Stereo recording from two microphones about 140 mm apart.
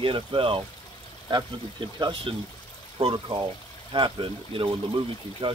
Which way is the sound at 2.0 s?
35° right (ahead or behind).